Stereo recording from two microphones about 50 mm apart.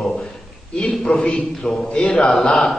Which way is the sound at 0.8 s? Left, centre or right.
Centre.